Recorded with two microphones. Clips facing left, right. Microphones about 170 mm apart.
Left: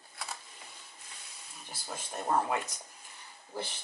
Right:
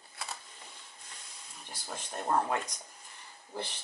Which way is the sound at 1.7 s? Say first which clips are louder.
Even; 5° left (ahead or behind).